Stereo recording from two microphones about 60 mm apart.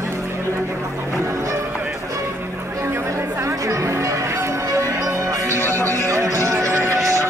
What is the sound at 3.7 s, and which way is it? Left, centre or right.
Music, right.